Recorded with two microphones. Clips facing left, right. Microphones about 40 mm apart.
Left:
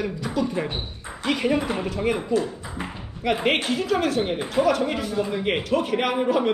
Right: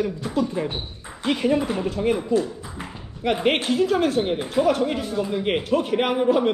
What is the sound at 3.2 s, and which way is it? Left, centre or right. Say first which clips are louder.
A man's voice: right 1 dB; left.